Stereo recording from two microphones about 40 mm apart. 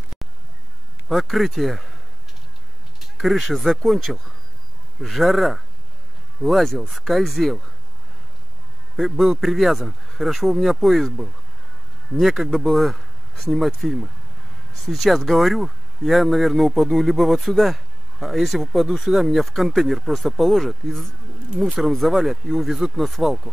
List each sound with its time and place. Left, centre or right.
1.0 s speech: centre
3.0 s speech: centre
8.9 s speech: centre
12.1 s speech: centre
22.1 s speech: centre